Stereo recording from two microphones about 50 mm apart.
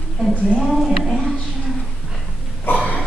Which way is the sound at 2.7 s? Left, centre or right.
Left.